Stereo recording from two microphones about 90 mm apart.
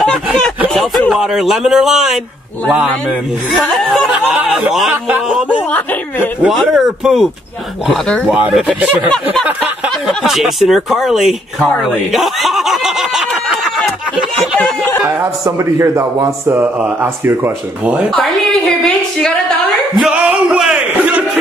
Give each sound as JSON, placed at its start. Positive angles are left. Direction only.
{"t": 1.1, "sound": "speech", "side_deg": 0}
{"t": 3.5, "sound": "speech", "side_deg": 0}
{"t": 6.4, "sound": "speech", "side_deg": 0}
{"t": 8.3, "sound": "speech", "side_deg": -15}
{"t": 10.0, "sound": "speech", "side_deg": -5}
{"t": 12.1, "sound": "a sound", "side_deg": 0}
{"t": 15.4, "sound": "a man's voice", "side_deg": -30}
{"t": 20.0, "sound": "a sound", "side_deg": -10}